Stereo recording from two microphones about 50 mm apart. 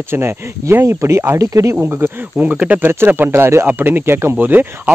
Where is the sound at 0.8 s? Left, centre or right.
Right.